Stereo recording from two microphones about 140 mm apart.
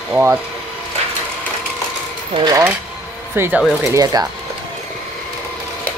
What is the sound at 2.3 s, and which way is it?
Speech, 35° right (ahead or behind).